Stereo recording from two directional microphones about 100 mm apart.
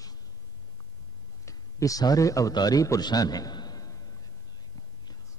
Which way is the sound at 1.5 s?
35° left (ahead or behind).